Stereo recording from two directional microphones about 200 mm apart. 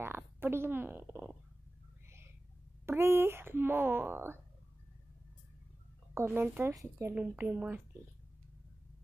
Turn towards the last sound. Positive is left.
turn(degrees=-5)  # may be behind; listen again after turning